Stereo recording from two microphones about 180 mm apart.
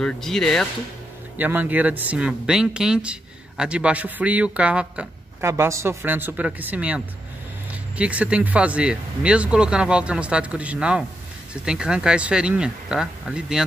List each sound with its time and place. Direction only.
0.0 s speech: 5° left (ahead or behind)
1.4 s speech: 10° right (ahead or behind)
8.0 s speech: 5° right (ahead or behind)